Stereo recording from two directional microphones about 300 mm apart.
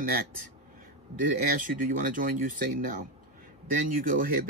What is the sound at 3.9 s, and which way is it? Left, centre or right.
Speech, right.